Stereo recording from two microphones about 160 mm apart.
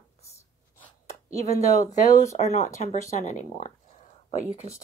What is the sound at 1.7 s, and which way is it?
Speech, 50° left (ahead or behind).